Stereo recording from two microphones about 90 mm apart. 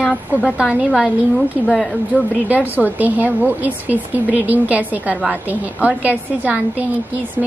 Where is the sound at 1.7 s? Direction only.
5° left (ahead or behind).